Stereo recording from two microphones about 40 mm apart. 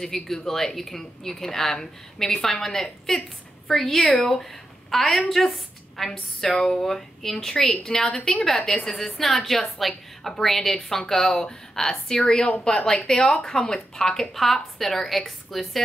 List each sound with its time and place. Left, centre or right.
0.0 s a woman's voice: centre
14.3 s a woman's voice: centre